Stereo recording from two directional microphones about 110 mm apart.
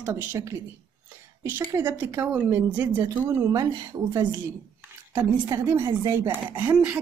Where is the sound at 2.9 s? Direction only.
35° right (ahead or behind).